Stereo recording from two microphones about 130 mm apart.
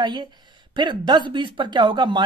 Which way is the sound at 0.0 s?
35° right (ahead or behind).